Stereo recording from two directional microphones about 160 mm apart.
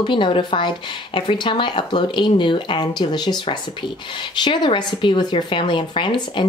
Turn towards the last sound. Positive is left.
turn(degrees=30)  # may be behind; listen again after turning